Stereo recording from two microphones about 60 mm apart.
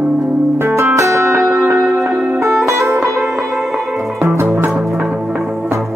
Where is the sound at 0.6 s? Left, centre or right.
Right.